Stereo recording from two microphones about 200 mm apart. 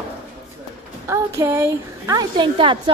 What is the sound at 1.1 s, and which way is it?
A woman's voice, 15° right (ahead or behind).